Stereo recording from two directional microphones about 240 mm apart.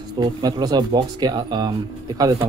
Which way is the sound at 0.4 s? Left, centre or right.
Centre.